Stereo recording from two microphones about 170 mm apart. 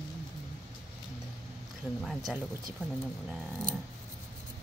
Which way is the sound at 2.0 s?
Centre (ahead or behind).